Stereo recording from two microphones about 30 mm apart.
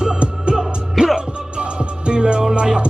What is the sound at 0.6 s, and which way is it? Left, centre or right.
Music, centre.